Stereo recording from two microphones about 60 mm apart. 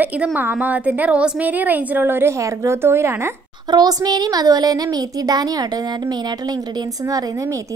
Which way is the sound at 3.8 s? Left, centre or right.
Right.